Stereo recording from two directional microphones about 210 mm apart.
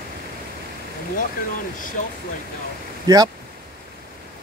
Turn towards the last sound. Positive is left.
turn(degrees=-20)  # may be behind; listen again after turning